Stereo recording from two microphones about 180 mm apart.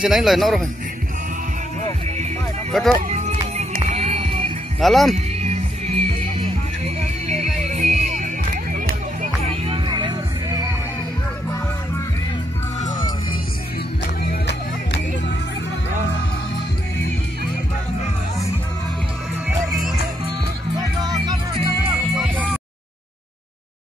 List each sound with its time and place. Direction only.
0.0 s speech: centre (ahead or behind)
2.7 s speech: centre (ahead or behind)
3.1 s music: 35° right (ahead or behind)
4.7 s speech: centre (ahead or behind)
5.1 s music: 40° right (ahead or behind)
7.7 s music: 40° right (ahead or behind)
8.7 s music: 50° right (ahead or behind)
9.7 s music: 25° right (ahead or behind)
14.2 s music: 65° left (ahead or behind)
20.2 s music: 20° right (ahead or behind)
22.1 s music: 10° right (ahead or behind)